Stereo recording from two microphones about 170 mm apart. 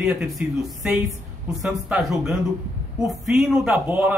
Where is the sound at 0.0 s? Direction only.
5° right (ahead or behind).